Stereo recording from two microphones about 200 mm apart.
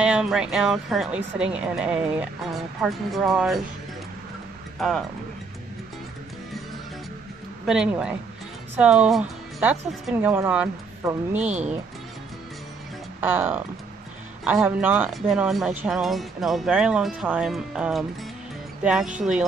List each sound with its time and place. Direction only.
0.0 s speech: 5° right (ahead or behind)
4.7 s speech: centre (ahead or behind)
7.6 s speech: 5° right (ahead or behind)
11.4 s speech: 35° right (ahead or behind)
13.2 s speech: 10° right (ahead or behind)